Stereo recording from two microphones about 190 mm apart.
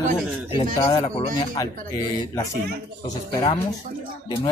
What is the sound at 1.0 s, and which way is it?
Speech, 30° left (ahead or behind).